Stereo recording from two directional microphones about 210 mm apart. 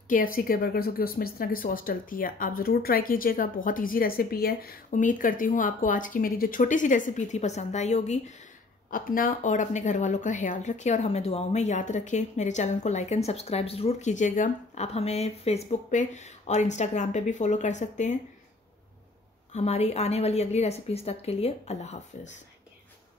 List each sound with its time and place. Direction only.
0.1 s speech: 45° left (ahead or behind)
19.5 s speech: 30° left (ahead or behind)